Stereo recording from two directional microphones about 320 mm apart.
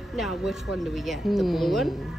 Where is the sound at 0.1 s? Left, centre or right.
Centre.